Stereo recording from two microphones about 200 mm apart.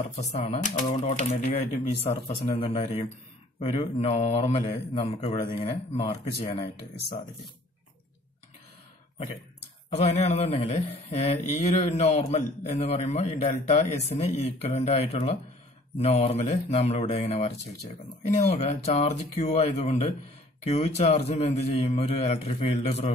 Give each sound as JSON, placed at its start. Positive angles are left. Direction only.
{"t": 0.2, "sound": "a man's voice", "side_deg": 35}
{"t": 9.9, "sound": "a man's voice", "side_deg": 30}